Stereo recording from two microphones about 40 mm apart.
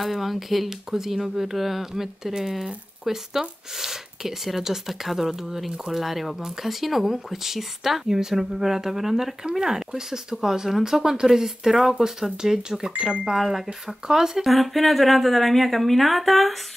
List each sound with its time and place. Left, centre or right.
0.0 s speech: centre
14.4 s speech: centre